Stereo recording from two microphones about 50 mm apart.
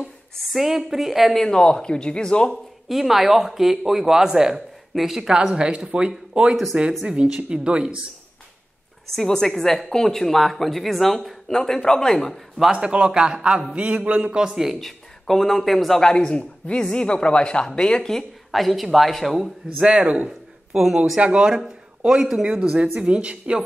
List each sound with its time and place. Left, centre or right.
0.4 s speech: centre
1.3 s a woman's voice: centre
2.9 s a man's voice: centre
6.5 s a man's voice: centre; by 7.9 s right
9.1 s a woman's voice: centre
12.7 s a man's voice: centre
14.9 s speech: centre
16.0 s a woman's voice: centre
18.5 s speech: centre
19.8 s a man's voice: centre
20.2 s a sound: centre
21.2 s a man's voice: right
22.0 s speech: centre
23.0 s a man's voice: right